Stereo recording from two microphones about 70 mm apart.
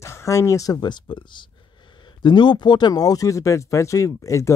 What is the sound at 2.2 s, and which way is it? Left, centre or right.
Speech, left.